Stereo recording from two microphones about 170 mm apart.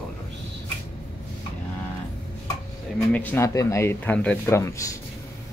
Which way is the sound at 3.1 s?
10° left (ahead or behind).